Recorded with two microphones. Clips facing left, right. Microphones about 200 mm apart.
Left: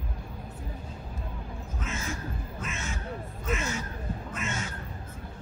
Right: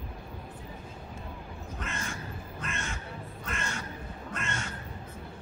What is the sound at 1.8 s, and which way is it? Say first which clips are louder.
Crow: left 3 dB; centre (ahead or behind).